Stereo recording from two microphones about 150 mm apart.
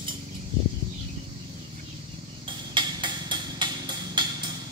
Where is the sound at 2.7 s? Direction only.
30° right (ahead or behind).